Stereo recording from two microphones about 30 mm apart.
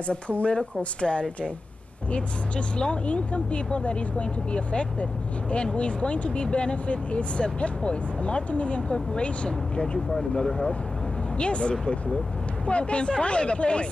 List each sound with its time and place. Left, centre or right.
0.0 s speech: left
0.6 s a woman's voice: left
2.8 s a woman's voice: left